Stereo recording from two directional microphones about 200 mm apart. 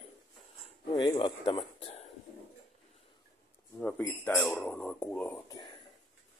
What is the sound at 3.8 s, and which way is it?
Speech, 5° left (ahead or behind).